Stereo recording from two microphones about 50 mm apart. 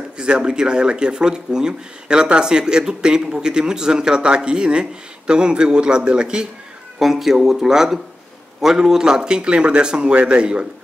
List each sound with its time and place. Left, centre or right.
0.2 s speech: centre
7.0 s speech: centre